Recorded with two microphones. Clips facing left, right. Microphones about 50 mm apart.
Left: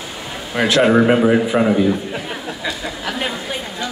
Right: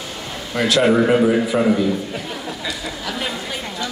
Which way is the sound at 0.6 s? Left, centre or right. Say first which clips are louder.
Left 2 dB; left.